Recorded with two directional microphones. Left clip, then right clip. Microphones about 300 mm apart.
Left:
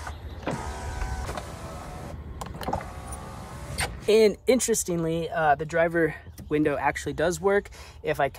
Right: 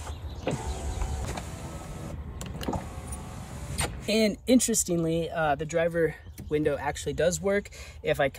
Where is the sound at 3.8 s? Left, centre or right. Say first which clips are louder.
Left 6 dB; centre.